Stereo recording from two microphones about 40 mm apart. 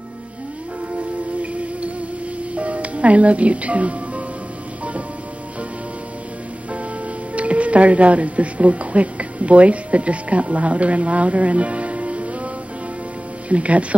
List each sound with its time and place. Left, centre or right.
0.9 s music: right
2.5 s speech: right
7.3 s speech: right
13.5 s speech: right